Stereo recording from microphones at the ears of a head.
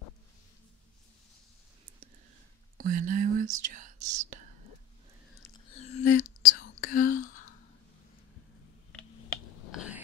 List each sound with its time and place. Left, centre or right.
2.8 s whispering: right
5.3 s whispering: left
8.9 s a sound: left